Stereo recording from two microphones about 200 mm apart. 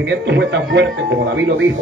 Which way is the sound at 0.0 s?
60° right (ahead or behind).